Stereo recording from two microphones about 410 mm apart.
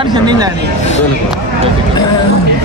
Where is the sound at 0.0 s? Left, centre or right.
Centre.